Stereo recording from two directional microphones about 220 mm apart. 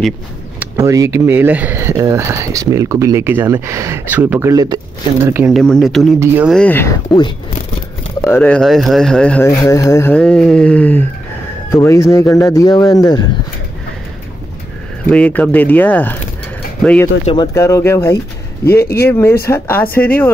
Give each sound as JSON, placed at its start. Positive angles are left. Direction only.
{"t": 0.6, "sound": "speech", "side_deg": -15}
{"t": 6.5, "sound": "speech", "side_deg": 5}
{"t": 7.1, "sound": "speech", "side_deg": 20}
{"t": 8.2, "sound": "speech", "side_deg": 10}
{"t": 15.0, "sound": "speech", "side_deg": 5}
{"t": 17.3, "sound": "speech", "side_deg": 15}
{"t": 18.7, "sound": "speech", "side_deg": 45}
{"t": 19.0, "sound": "speech", "side_deg": 10}